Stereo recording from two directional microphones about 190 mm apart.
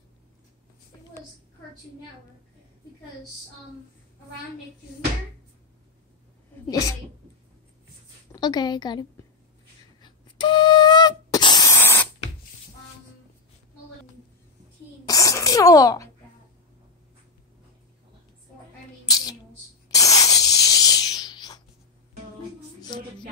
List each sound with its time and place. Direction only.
8.3 s a woman's voice: 20° left (ahead or behind)
10.0 s flute: 25° left (ahead or behind)
15.0 s sneeze: 20° left (ahead or behind)
19.0 s a sound: 20° left (ahead or behind)
19.9 s snake: 20° left (ahead or behind)